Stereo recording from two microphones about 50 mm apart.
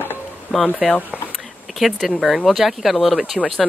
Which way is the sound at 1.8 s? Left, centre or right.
Centre.